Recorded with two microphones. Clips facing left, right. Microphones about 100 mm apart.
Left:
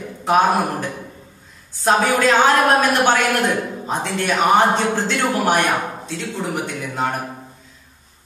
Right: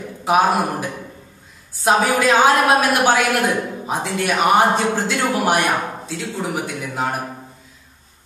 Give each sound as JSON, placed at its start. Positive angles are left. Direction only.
{"t": 0.2, "sound": "a man's voice", "side_deg": -5}